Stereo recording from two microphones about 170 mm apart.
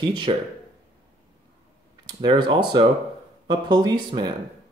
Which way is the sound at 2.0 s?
30° right (ahead or behind).